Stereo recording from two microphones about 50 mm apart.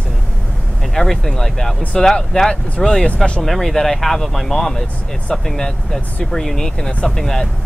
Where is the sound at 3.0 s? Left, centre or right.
Left.